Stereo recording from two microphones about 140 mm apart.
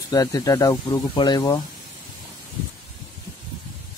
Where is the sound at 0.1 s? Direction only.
25° left (ahead or behind).